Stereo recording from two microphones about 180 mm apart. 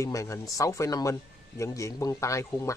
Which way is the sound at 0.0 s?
15° left (ahead or behind).